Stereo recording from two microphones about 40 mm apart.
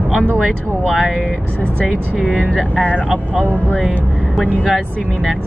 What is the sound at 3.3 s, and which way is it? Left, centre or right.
Speech, right.